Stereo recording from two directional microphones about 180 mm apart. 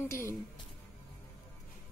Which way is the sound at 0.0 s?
15° left (ahead or behind).